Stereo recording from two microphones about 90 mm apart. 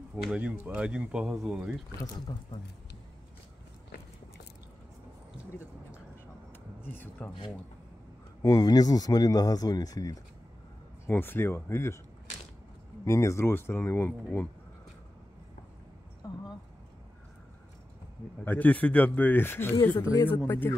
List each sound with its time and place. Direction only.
0.3 s speech: 15° right (ahead or behind)
6.8 s speech: 25° left (ahead or behind)
8.4 s speech: 45° left (ahead or behind)
11.1 s speech: 25° left (ahead or behind)
13.0 s speech: 35° left (ahead or behind)
18.4 s speech: 20° left (ahead or behind)
20.0 s speech: 40° left (ahead or behind)
20.2 s speech: 20° left (ahead or behind)